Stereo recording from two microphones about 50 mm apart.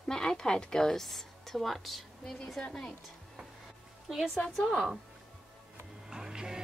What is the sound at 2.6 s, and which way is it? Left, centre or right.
Speech, centre.